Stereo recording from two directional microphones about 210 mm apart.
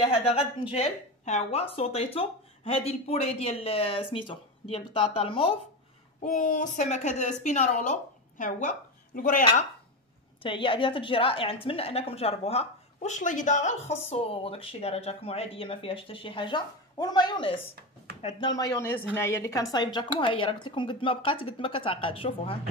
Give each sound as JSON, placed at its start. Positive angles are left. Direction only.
{"t": 0.0, "sound": "speech", "side_deg": 25}
{"t": 6.2, "sound": "a woman's voice", "side_deg": 35}
{"t": 10.4, "sound": "speech", "side_deg": 25}